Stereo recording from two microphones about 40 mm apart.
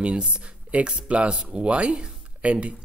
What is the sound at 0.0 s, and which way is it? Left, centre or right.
A woman's voice, right.